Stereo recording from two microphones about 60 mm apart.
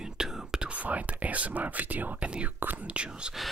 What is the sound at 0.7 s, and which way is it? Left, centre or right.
Speech, right.